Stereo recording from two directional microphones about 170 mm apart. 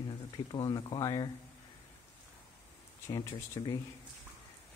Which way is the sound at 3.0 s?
15° left (ahead or behind).